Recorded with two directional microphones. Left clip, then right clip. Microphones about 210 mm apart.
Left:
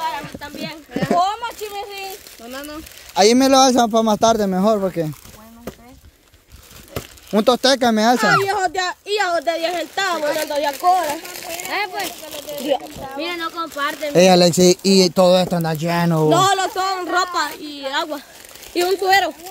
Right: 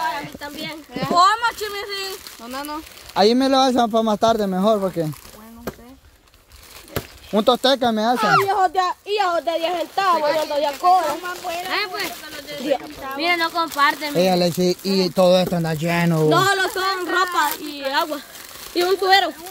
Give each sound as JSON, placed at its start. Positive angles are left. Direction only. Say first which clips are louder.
{"t": 0.4, "sound": "a sound", "louder": "even", "side_deg": 20}
{"t": 1.4, "sound": "a sound", "louder": "right 4 dB", "side_deg": -55}
{"t": 2.5, "sound": "speech", "louder": "right 3 dB", "side_deg": -10}
{"t": 3.2, "sound": "a woman's voice", "louder": "left 3 dB", "side_deg": 30}
{"t": 7.2, "sound": "a woman's voice", "louder": "left 2 dB", "side_deg": 30}
{"t": 8.5, "sound": "speech", "louder": "right 2 dB", "side_deg": 55}
{"t": 10.4, "sound": "speech", "louder": "left 1 dB", "side_deg": 45}
{"t": 11.7, "sound": "speech", "louder": "left 2 dB", "side_deg": 0}
{"t": 12.7, "sound": "a woman's voice", "louder": "left 1 dB", "side_deg": 20}
{"t": 13.2, "sound": "speech", "louder": "right 5 dB", "side_deg": -25}
{"t": 14.1, "sound": "speech", "louder": "left 6 dB", "side_deg": 40}
{"t": 15.1, "sound": "a woman's voice", "louder": "left 2 dB", "side_deg": 20}